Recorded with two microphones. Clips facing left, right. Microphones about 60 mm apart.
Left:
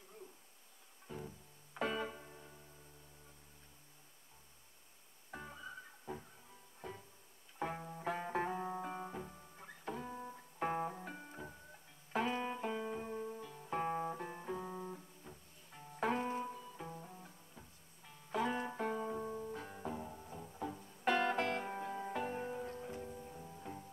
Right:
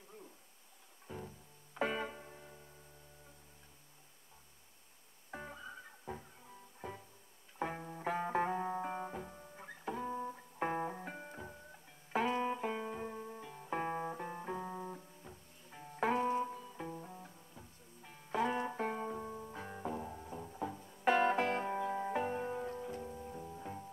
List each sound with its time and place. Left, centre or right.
1.0 s music: centre
1.9 s music: right
2.1 s music: centre
5.3 s music: centre
7.6 s music: centre
12.1 s music: centre
13.4 s music: centre
16.5 s music: centre
19.0 s music: centre; by 22.1 s right
22.1 s music: centre